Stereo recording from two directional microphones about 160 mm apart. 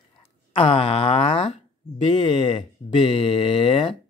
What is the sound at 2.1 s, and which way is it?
Speech, 30° left (ahead or behind).